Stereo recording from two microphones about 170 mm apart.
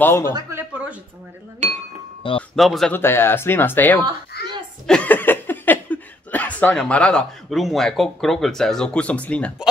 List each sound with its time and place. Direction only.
0.0 s speech: 15° left (ahead or behind)
0.3 s a sound: 15° right (ahead or behind)
1.6 s speech: 45° right (ahead or behind)
2.5 s speech: centre (ahead or behind)
2.9 s speech: 15° left (ahead or behind)